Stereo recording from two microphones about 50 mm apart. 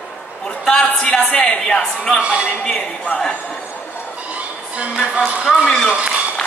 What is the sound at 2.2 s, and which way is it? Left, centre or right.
Speech, right.